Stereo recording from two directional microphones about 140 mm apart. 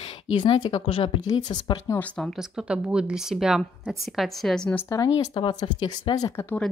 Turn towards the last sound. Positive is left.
turn(degrees=25)  # may be behind; listen again after turning